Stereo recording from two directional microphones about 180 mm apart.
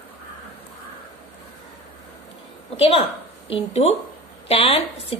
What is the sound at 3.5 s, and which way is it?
A woman's voice, 35° left (ahead or behind).